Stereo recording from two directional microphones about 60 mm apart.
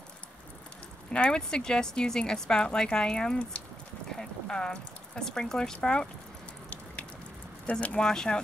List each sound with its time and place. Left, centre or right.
1.1 s speech: centre
7.7 s speech: left
8.0 s speech: centre